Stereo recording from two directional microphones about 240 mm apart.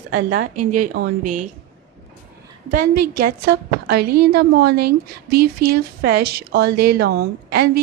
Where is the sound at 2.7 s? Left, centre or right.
Right.